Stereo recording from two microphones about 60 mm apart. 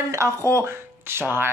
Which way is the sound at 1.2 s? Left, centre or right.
Right.